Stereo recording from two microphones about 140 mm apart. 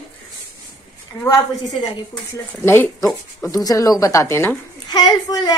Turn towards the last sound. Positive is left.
turn(degrees=30)  # may be behind; listen again after turning